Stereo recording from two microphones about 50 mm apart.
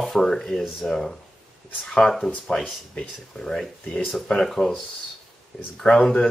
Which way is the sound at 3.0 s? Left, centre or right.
Centre.